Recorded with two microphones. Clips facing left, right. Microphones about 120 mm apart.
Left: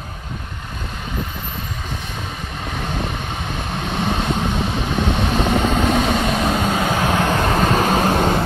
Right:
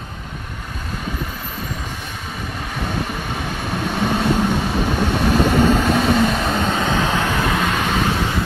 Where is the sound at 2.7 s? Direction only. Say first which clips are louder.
Right 1 dB; 5° right (ahead or behind).